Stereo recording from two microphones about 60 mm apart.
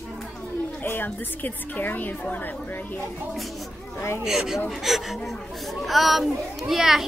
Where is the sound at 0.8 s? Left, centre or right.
Left.